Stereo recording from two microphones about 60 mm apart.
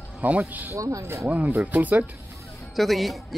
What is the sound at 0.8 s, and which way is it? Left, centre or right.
Speech, right.